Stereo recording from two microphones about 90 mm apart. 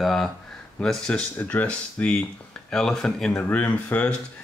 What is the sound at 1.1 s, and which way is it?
Speech, 15° left (ahead or behind).